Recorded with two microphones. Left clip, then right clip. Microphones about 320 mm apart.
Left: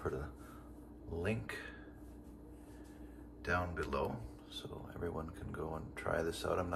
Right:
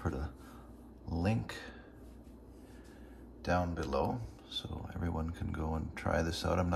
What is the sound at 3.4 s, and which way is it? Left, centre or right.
Speech, centre.